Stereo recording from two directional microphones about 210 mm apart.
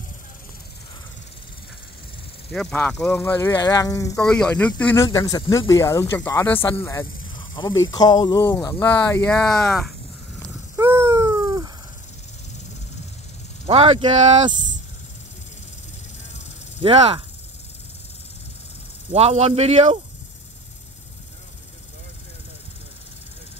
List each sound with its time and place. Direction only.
2.5 s speech: 5° left (ahead or behind)
10.8 s a sound: 15° right (ahead or behind)
13.7 s speech: 25° right (ahead or behind)
16.8 s speech: 25° right (ahead or behind)
19.1 s speech: 30° right (ahead or behind)